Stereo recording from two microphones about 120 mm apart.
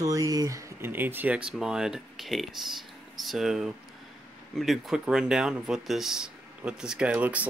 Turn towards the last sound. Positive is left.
turn(degrees=-10)  # may be behind; listen again after turning